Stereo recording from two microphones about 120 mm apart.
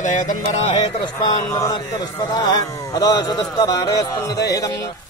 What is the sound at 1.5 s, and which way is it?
A man's voice, 30° left (ahead or behind).